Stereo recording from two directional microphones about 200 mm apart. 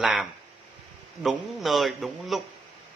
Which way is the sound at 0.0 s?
Centre (ahead or behind).